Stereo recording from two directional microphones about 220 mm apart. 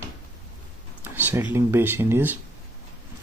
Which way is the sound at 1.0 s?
10° right (ahead or behind).